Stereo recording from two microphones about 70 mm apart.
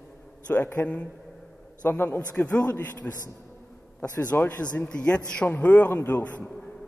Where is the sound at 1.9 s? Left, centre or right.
Left.